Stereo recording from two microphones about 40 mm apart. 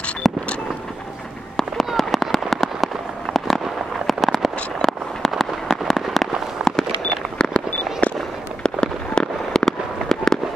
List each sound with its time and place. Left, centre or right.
0.2 s a sound: centre
2.0 s fireworks: centre
5.9 s fireworks: centre
6.6 s a sound: right
7.3 s fireworks: left
8.6 s fireworks: left
9.7 s fireworks: centre